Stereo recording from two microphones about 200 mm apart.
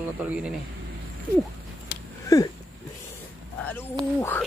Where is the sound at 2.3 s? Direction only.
15° left (ahead or behind).